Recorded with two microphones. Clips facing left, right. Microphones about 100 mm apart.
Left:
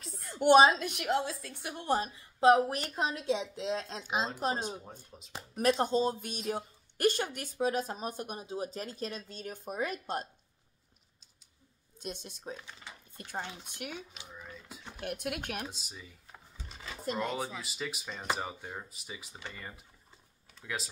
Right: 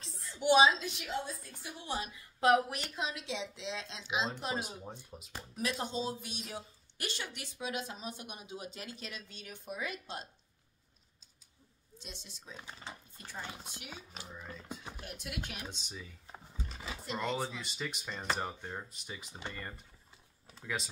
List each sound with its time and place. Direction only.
0.2 s a woman's voice: 55° left (ahead or behind)
1.9 s a woman's voice: 40° left (ahead or behind)
2.8 s a woman's voice: 45° left (ahead or behind)
5.1 s speech: 10° right (ahead or behind)
5.6 s a woman's voice: 50° left (ahead or behind)
12.0 s a woman's voice: 50° left (ahead or behind)
14.2 s speech: centre (ahead or behind)
15.0 s a woman's voice: 55° left (ahead or behind)
15.7 s speech: 5° left (ahead or behind)
16.3 s roaring cats: 10° right (ahead or behind)
17.2 s speech: 5° left (ahead or behind)